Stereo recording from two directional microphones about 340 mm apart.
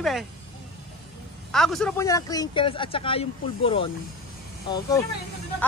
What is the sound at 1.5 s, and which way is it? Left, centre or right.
Speech, centre.